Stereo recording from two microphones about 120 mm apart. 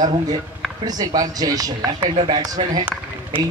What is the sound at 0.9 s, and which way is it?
Speech, 35° right (ahead or behind).